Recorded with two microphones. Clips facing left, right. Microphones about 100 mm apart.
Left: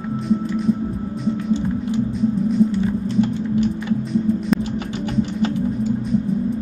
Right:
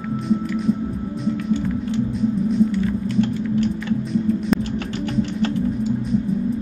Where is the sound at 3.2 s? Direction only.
15° left (ahead or behind).